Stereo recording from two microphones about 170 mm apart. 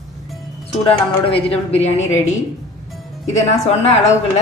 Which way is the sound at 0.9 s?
35° left (ahead or behind).